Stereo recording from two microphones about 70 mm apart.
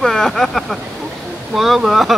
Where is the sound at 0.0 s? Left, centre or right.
Centre.